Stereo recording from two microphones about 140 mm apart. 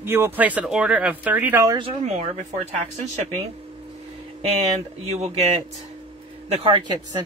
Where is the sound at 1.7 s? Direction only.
45° right (ahead or behind).